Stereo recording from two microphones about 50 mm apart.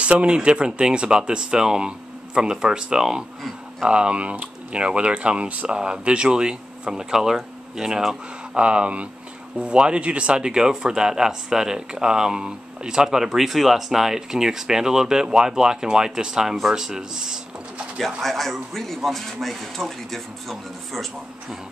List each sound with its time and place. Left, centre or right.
0.0 s speech: right
17.9 s speech: centre